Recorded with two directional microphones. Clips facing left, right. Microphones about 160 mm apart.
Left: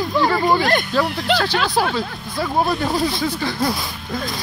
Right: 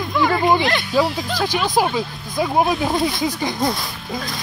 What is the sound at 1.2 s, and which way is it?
Speech, 75° left (ahead or behind).